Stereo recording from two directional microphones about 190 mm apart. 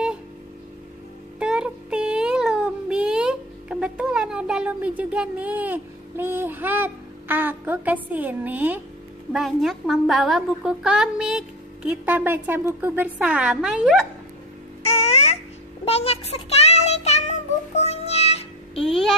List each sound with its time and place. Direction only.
1.4 s child singing: 5° right (ahead or behind)
9.3 s a woman's voice: centre (ahead or behind)
14.9 s babbling: 35° left (ahead or behind)
15.8 s child singing: 30° left (ahead or behind)
17.7 s music: 35° left (ahead or behind)
18.8 s speech: centre (ahead or behind)